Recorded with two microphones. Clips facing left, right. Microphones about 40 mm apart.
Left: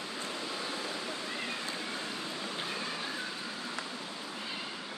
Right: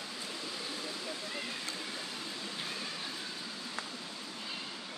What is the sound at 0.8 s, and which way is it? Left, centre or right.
Vehicle, left.